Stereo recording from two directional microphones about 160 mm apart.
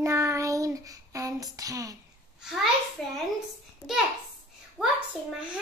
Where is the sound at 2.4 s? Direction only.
Centre (ahead or behind).